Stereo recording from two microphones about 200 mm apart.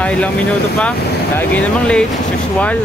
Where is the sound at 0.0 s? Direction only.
5° left (ahead or behind).